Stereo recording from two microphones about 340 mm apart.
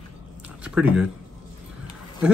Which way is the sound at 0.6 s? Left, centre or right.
Centre.